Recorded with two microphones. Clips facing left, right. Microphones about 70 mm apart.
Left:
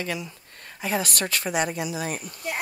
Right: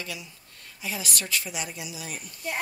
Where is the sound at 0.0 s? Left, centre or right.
Left.